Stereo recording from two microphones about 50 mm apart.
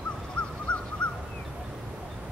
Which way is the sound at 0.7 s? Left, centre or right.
Left.